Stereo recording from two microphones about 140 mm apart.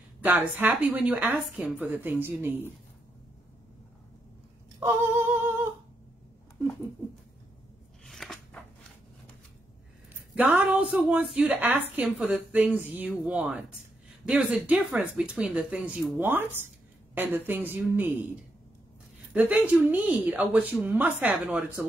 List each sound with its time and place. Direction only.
0.2 s a woman's voice: 10° right (ahead or behind)
4.7 s humming: 15° right (ahead or behind)
8.0 s scissors: 5° left (ahead or behind)
10.3 s a woman's voice: 10° right (ahead or behind)